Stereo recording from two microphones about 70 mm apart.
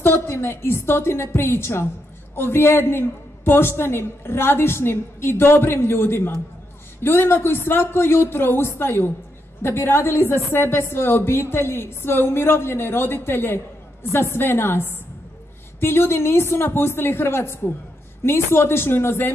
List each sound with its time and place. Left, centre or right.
0.0 s a woman's voice: left